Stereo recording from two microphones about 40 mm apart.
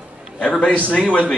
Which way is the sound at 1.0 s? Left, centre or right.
Left.